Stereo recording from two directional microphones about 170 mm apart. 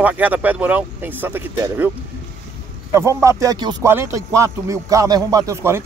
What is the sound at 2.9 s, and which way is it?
Speech, 15° right (ahead or behind).